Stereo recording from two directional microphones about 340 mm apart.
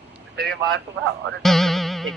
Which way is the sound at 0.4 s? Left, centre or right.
Right.